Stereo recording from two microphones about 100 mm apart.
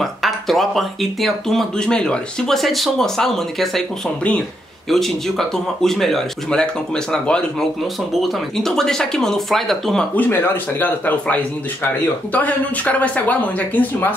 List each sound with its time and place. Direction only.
0.0 s speech: centre (ahead or behind)
10.1 s a man's voice: 20° left (ahead or behind)